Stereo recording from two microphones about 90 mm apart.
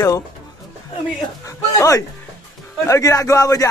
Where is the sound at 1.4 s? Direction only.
40° left (ahead or behind).